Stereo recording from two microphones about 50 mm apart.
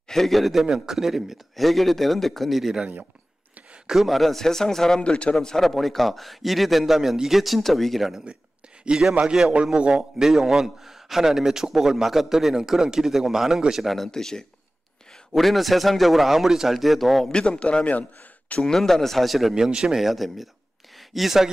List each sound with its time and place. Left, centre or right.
0.1 s a man's voice: centre
3.8 s a man's voice: centre
8.8 s a man's voice: centre
10.2 s a man's voice: centre
13.9 s a man's voice: centre
17.3 s speech: centre
18.6 s a man's voice: centre
19.5 s a man's voice: centre
20.0 s a man's voice: centre